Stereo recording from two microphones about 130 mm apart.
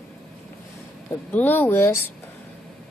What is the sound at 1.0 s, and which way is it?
Speech, 10° left (ahead or behind).